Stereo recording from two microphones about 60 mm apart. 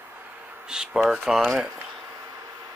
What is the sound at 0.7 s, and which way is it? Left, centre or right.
Speech, centre.